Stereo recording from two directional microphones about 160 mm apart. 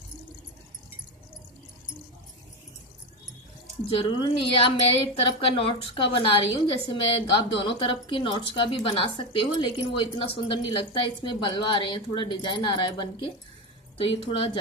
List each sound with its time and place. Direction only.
3.9 s speech: 35° left (ahead or behind)